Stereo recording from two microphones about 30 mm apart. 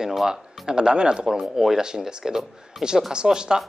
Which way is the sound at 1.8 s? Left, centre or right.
Right.